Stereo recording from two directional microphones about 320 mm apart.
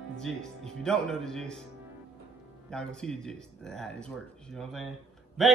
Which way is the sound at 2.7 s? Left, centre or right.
Centre.